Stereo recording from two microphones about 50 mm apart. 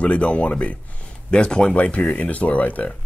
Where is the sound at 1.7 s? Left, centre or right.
Left.